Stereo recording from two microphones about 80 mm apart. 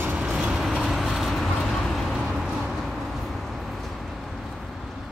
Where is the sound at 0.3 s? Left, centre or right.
Centre.